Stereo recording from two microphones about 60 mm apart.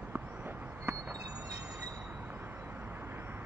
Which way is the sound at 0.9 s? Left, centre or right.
Right.